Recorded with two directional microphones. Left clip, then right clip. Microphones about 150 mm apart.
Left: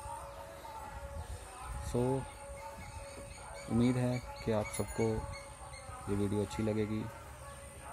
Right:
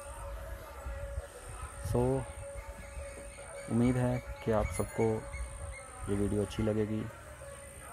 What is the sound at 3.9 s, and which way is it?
Speech, 20° left (ahead or behind).